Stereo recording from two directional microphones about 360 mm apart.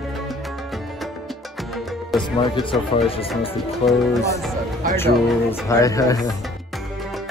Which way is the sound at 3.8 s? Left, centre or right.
Centre.